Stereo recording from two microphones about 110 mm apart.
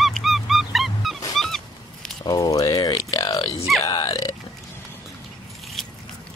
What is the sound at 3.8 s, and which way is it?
Burping, 35° left (ahead or behind).